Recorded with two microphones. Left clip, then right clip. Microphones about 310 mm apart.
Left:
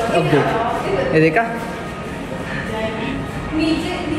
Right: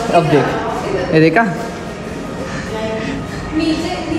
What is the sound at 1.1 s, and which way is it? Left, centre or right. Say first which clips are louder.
Speech: right 4 dB; right.